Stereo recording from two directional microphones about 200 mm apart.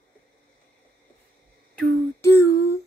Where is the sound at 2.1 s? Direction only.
15° left (ahead or behind).